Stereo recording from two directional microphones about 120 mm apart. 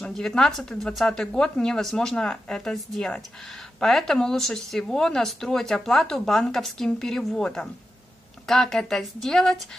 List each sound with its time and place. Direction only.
0.0 s speech: 5° left (ahead or behind)